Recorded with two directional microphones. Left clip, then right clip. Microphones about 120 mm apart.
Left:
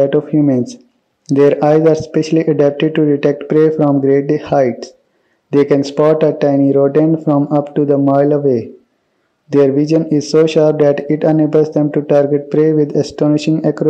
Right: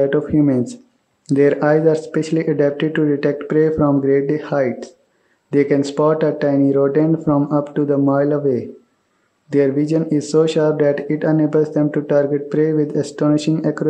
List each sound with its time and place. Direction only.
0.0 s speech: 20° left (ahead or behind)